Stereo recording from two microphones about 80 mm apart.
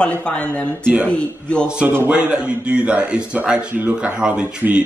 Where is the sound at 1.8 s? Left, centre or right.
Right.